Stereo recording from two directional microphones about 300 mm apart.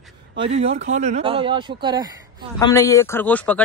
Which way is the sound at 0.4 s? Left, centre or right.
Centre.